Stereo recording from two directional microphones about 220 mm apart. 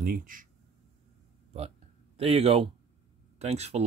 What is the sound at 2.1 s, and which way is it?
Speech, 25° right (ahead or behind).